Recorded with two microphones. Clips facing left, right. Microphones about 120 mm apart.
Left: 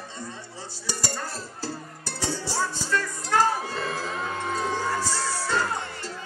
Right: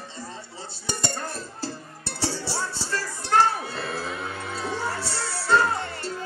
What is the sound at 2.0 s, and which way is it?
Music, 30° right (ahead or behind).